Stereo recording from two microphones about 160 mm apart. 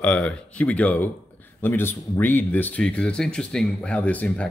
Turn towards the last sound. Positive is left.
turn(degrees=5)  # may be behind; listen again after turning